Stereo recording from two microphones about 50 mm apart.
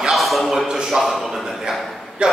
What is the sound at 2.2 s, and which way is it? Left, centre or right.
Speech, right.